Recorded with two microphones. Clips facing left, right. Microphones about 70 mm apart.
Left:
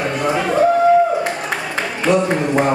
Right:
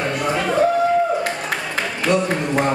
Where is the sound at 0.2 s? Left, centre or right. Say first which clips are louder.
Left 3 dB; centre.